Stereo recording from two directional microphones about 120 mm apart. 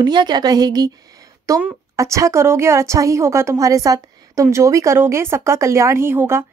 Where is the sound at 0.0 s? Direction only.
35° right (ahead or behind).